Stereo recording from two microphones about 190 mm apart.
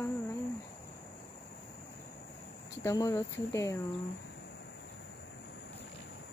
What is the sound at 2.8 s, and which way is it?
Speech, 15° left (ahead or behind).